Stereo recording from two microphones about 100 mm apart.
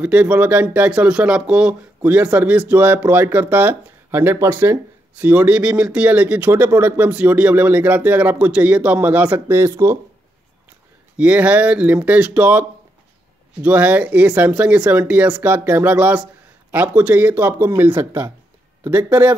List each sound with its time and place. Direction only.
0.0 s speech: 10° right (ahead or behind)
9.6 s speech: 30° right (ahead or behind)
11.1 s speech: 15° right (ahead or behind)